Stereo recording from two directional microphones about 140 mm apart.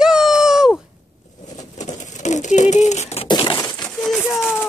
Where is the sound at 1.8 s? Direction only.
60° left (ahead or behind).